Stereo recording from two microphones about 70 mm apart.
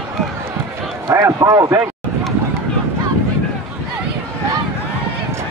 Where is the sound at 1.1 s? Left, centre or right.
Right.